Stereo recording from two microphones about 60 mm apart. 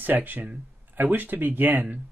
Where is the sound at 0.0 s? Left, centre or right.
Right.